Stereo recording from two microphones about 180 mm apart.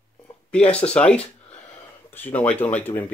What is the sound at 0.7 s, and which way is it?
Speech, 5° left (ahead or behind).